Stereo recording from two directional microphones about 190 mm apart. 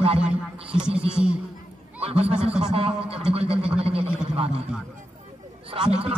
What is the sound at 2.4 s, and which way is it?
Speech, 5° right (ahead or behind).